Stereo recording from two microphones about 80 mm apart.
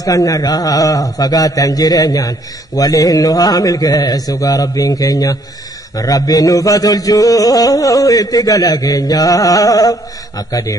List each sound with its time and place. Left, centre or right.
0.0 s a man's voice: left